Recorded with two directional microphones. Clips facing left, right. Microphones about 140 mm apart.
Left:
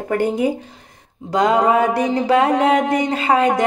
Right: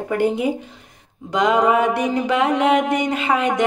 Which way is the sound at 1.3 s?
35° left (ahead or behind).